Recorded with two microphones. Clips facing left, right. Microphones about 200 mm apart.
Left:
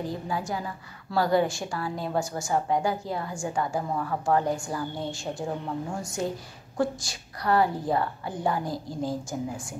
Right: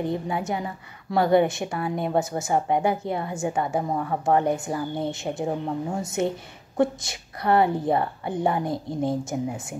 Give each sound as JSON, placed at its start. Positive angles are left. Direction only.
{"t": 0.0, "sound": "a woman's voice", "side_deg": -25}